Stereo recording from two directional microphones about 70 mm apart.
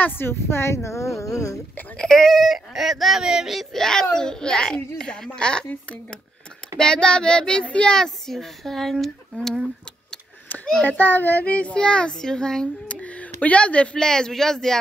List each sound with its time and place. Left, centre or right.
0.0 s a woman's voice: left
2.0 s speech: centre
10.5 s a sound: left
10.9 s speech: left; by 14.8 s centre